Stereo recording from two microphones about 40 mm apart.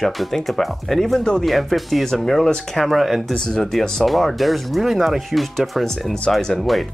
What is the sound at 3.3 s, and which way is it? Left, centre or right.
Speech, centre.